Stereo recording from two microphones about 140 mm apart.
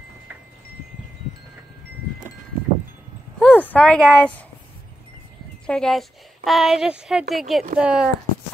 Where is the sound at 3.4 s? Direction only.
10° left (ahead or behind).